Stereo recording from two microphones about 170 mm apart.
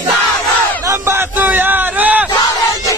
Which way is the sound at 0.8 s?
15° right (ahead or behind).